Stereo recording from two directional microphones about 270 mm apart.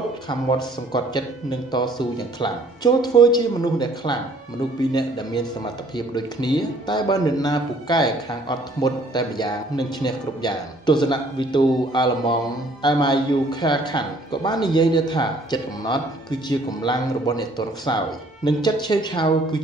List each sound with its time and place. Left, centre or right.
0.9 s a man's voice: centre